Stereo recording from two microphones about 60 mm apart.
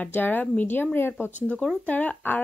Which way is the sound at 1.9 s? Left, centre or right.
Left.